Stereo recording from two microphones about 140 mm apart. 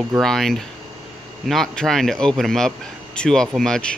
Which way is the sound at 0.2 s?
Centre (ahead or behind).